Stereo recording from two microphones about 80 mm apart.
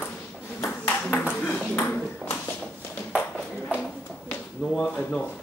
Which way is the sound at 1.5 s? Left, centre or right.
Centre.